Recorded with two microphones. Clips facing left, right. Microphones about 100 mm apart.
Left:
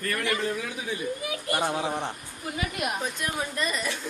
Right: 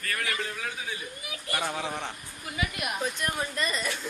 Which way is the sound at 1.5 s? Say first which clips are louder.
Left 4 dB; 30° left (ahead or behind).